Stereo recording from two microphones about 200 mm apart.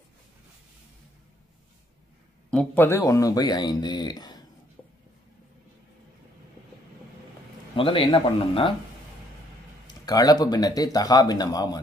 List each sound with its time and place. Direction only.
2.5 s speech: 5° left (ahead or behind)
7.7 s speech: 25° left (ahead or behind)
9.8 s speech: 20° left (ahead or behind)